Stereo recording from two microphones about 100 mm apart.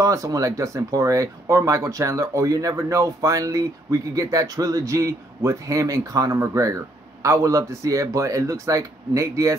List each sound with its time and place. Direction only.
0.0 s speech: 35° right (ahead or behind)